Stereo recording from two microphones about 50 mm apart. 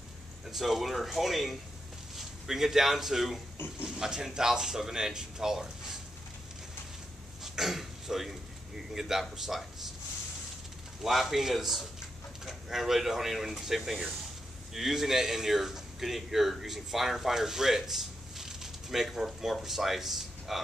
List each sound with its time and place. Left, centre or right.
0.5 s a man's voice: centre
7.4 s a sound: centre
8.9 s speech: centre
11.0 s speech: centre